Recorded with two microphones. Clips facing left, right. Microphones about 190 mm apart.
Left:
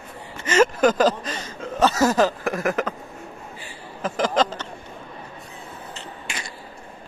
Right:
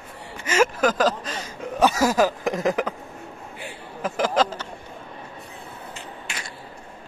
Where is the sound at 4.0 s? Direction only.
5° right (ahead or behind).